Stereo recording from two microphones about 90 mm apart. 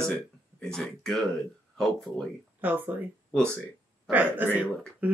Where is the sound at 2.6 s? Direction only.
20° right (ahead or behind).